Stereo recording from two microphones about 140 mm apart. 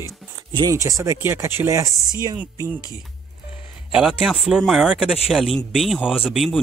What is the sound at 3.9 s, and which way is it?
Speech, 5° right (ahead or behind).